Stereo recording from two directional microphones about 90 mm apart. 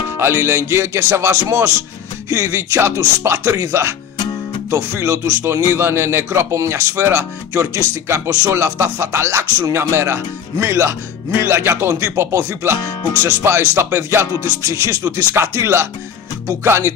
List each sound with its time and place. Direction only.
0.2 s speech: 30° right (ahead or behind)